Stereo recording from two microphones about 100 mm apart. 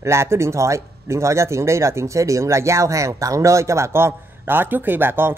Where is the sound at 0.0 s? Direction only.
25° right (ahead or behind).